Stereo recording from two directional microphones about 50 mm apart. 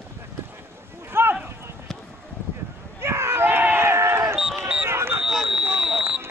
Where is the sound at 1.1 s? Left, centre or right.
Right.